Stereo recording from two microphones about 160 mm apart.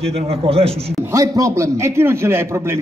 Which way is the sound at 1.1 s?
20° right (ahead or behind).